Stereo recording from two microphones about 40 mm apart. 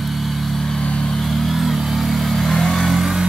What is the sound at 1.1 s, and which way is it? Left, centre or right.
Vehicle, centre.